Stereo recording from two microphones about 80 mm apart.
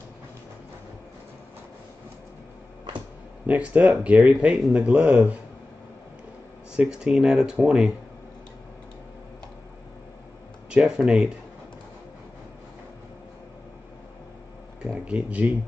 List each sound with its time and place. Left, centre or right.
3.4 s speech: centre
6.7 s speech: centre
10.7 s speech: centre
14.8 s a sound: centre